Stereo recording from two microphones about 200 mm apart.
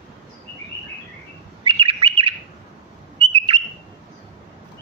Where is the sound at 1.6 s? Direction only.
25° right (ahead or behind).